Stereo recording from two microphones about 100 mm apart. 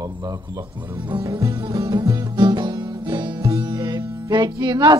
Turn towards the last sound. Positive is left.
turn(degrees=-50)  # may be behind; listen again after turning